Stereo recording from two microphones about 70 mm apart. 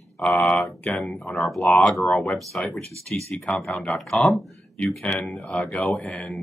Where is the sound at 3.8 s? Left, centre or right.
Centre.